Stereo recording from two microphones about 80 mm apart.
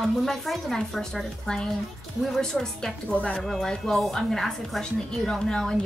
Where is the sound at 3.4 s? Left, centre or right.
Centre.